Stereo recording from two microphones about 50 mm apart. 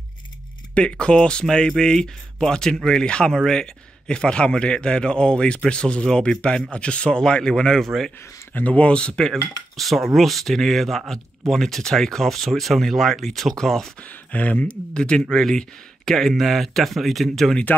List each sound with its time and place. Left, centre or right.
0.7 s speech: centre
7.8 s speech: centre
8.5 s speech: left
9.8 s speech: centre
13.9 s speech: left
15.0 s speech: centre